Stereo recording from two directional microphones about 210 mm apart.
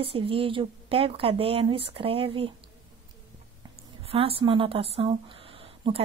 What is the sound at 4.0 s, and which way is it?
Speech, 25° right (ahead or behind).